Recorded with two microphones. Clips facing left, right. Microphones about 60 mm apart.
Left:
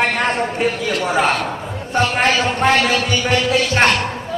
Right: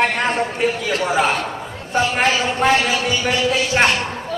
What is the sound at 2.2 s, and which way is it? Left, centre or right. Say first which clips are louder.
A man's voice: left 1 dB; left.